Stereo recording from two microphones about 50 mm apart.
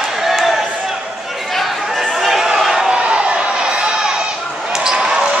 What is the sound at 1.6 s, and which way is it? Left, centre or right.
Chatter, centre.